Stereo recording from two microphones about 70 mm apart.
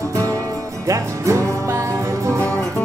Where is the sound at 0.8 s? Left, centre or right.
Right.